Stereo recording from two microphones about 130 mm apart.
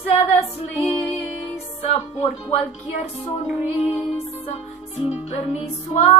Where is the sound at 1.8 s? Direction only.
55° left (ahead or behind).